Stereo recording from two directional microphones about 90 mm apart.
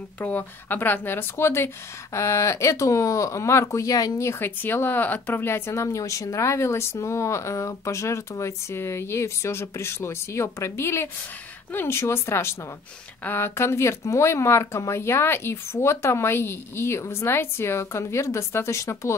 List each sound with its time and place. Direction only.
0.2 s speech: 20° left (ahead or behind); by 4.3 s 45° left (ahead or behind)
4.3 s speech: 25° left (ahead or behind)